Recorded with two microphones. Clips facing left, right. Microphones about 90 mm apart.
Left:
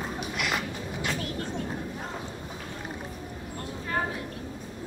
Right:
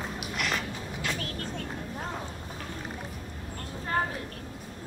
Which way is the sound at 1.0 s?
20° left (ahead or behind).